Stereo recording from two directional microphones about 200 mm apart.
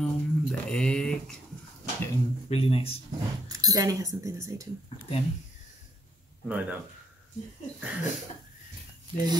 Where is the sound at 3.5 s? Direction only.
20° right (ahead or behind).